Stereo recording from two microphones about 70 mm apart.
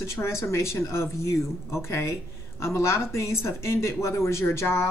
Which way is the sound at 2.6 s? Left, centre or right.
Left.